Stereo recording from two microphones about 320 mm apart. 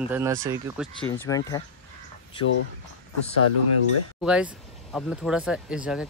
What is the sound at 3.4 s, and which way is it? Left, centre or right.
Speech, left.